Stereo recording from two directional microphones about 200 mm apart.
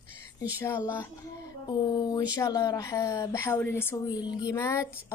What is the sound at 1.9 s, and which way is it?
A woman's voice, 20° left (ahead or behind).